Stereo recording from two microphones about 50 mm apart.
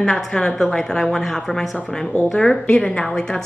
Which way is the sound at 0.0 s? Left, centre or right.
Centre.